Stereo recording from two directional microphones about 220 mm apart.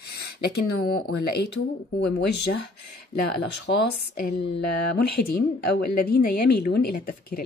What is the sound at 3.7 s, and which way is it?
A woman's voice, 45° left (ahead or behind).